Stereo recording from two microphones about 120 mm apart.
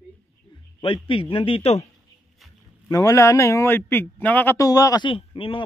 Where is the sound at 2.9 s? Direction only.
25° left (ahead or behind).